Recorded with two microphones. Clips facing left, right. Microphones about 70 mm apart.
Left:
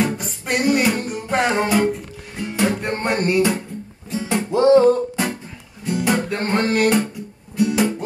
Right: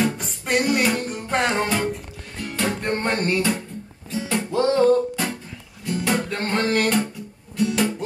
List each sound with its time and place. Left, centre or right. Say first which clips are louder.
0.2 s music: left 1 dB; centre
2.3 s music: left 5 dB; centre
6.5 s speech: left 3 dB; centre
7.5 s music: left 3 dB; centre